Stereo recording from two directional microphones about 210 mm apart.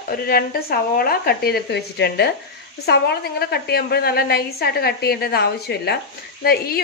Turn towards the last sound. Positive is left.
turn(degrees=50)  # may be behind; listen again after turning